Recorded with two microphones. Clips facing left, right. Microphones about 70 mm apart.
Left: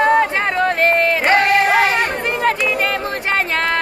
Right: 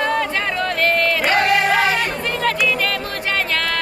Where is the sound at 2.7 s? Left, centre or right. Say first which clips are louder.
Left 2 dB; left.